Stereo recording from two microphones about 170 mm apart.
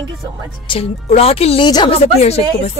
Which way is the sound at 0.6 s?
30° left (ahead or behind).